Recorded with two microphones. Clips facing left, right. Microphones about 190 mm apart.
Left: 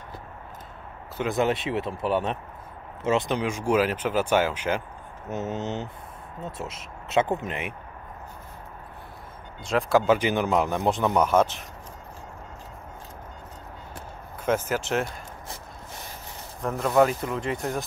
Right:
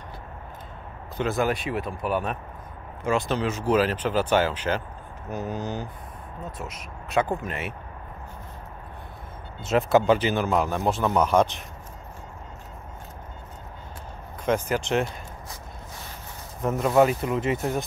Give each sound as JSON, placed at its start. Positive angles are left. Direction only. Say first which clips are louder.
{"t": 1.1, "sound": "speech", "louder": "even", "side_deg": 15}
{"t": 5.3, "sound": "speech", "louder": "left 1 dB", "side_deg": 25}
{"t": 9.6, "sound": "speech", "louder": "right 2 dB", "side_deg": -5}
{"t": 10.1, "sound": "speech", "louder": "even", "side_deg": 15}
{"t": 14.4, "sound": "speech", "louder": "right 1 dB", "side_deg": 5}
{"t": 16.6, "sound": "speech", "louder": "right 1 dB", "side_deg": -5}